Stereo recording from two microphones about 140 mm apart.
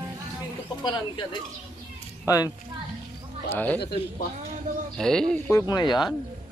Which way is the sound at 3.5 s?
15° left (ahead or behind).